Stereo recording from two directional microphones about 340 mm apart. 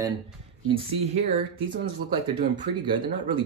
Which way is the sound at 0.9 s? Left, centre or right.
Centre.